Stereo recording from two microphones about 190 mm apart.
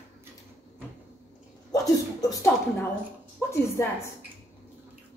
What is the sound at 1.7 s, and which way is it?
A woman's voice, 20° left (ahead or behind).